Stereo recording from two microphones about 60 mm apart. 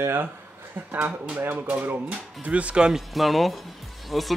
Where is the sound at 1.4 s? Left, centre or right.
Right.